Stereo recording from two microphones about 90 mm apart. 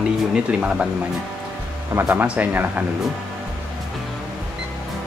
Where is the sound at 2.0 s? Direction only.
15° right (ahead or behind).